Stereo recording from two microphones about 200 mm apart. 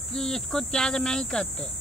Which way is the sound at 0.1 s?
5° left (ahead or behind).